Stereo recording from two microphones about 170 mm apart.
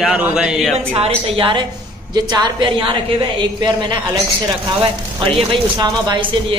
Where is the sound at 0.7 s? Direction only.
35° right (ahead or behind).